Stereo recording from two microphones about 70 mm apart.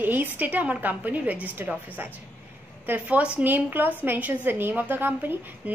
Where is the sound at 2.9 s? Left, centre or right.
Centre.